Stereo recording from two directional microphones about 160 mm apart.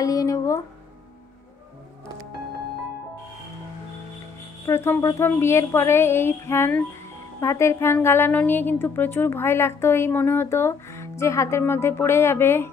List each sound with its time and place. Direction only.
0.0 s music: 20° left (ahead or behind)
4.6 s a woman's voice: 15° left (ahead or behind)